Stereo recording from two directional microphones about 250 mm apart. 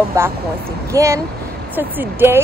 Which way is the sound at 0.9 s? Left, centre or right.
Centre.